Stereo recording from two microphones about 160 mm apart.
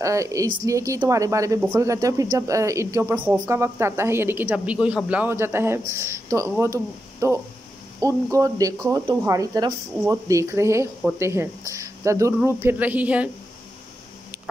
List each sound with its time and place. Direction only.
0.0 s a woman's voice: 20° right (ahead or behind)